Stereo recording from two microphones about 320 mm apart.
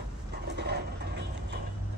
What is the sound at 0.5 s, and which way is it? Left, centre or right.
Dog, right.